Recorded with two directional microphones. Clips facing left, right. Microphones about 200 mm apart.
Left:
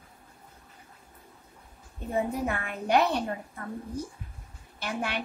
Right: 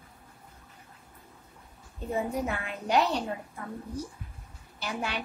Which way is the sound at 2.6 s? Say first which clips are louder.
Left 2 dB; 55° left (ahead or behind).